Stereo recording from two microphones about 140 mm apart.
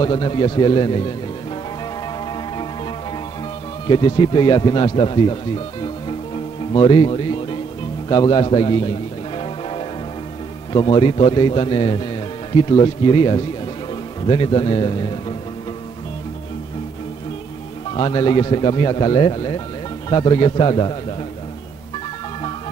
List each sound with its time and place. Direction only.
0.0 s speech: 35° left (ahead or behind)
3.8 s speech: 35° left (ahead or behind)
10.7 s a man's voice: 35° left (ahead or behind)
17.9 s speech: 35° left (ahead or behind)